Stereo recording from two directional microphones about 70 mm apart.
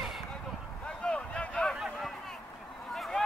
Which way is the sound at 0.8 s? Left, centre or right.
Centre.